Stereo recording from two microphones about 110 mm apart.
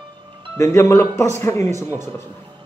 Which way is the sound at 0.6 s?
25° left (ahead or behind).